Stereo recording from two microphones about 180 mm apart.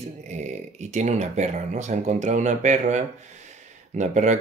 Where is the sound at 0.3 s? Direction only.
40° right (ahead or behind).